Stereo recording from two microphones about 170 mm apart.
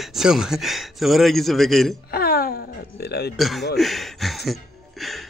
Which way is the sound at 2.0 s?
65° left (ahead or behind).